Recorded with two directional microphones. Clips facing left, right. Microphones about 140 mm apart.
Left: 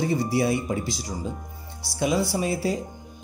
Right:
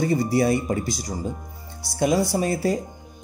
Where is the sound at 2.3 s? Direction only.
45° right (ahead or behind).